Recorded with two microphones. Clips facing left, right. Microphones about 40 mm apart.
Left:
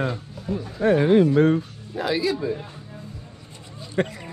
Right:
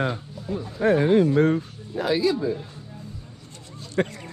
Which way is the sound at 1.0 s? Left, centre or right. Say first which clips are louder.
Left 2 dB; left.